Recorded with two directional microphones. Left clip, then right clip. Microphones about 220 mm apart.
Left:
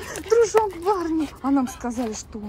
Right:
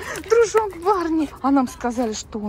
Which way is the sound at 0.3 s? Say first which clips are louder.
Right 2 dB; 15° left (ahead or behind).